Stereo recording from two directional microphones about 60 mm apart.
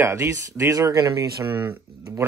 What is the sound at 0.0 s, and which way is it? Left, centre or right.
Speech, right.